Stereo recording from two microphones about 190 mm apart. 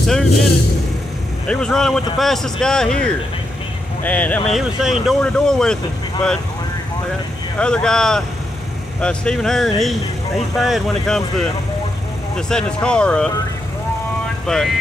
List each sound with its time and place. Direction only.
0.1 s speech: 5° left (ahead or behind)
1.5 s speech: 5° left (ahead or behind)
4.0 s speech: 10° left (ahead or behind)
7.5 s speech: 5° left (ahead or behind)
14.2 s vehicle: 5° left (ahead or behind)